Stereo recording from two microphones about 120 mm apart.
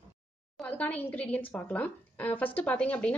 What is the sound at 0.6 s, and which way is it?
A woman's voice, 10° left (ahead or behind).